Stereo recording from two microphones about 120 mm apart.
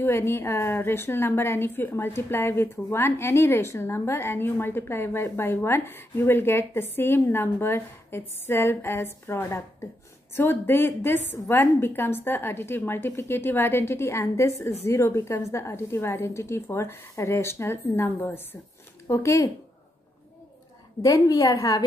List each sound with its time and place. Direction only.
0.0 s a woman's voice: 20° left (ahead or behind)
21.0 s a woman's voice: 30° left (ahead or behind)